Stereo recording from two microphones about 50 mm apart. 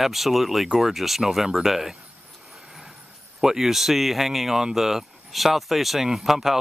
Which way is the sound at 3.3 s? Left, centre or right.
Centre.